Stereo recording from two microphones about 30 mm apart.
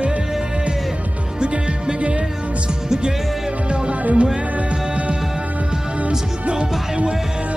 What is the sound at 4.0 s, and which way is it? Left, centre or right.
Music, right.